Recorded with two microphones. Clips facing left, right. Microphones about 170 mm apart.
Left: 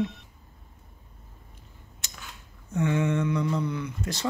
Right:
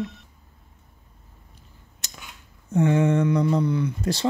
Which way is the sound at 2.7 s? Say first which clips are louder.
Right 6 dB; 35° right (ahead or behind).